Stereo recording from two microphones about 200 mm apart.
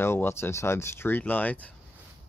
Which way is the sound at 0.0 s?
10° left (ahead or behind).